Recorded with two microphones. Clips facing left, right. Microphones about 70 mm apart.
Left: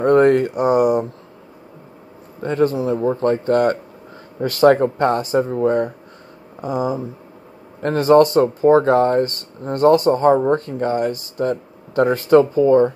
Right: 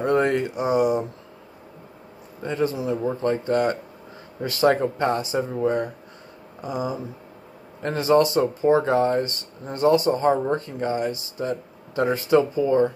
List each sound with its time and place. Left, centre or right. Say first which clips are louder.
0.0 s speech: left 8 dB; left
2.4 s speech: left 6 dB; left